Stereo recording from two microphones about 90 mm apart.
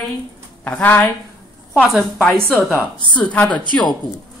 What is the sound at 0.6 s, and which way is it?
Speech, 15° left (ahead or behind).